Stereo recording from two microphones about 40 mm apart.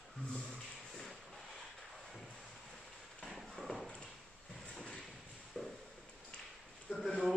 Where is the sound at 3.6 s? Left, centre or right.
Centre.